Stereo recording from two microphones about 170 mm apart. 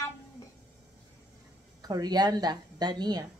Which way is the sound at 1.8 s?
20° right (ahead or behind).